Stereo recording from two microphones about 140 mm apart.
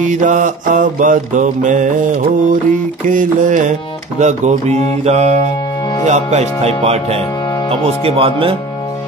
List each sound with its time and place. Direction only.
0.0 s mantra: 65° right (ahead or behind)
6.0 s speech: 55° right (ahead or behind)